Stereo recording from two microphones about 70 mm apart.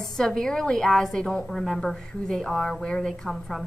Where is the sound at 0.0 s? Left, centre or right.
Centre.